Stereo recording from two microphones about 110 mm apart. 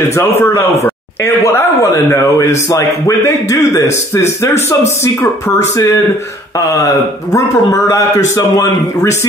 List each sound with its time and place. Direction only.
0.4 s speech: 25° left (ahead or behind)
7.3 s speech: 25° left (ahead or behind)